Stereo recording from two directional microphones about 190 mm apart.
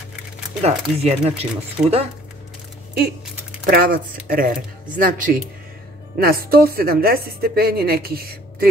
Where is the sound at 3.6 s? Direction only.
50° right (ahead or behind).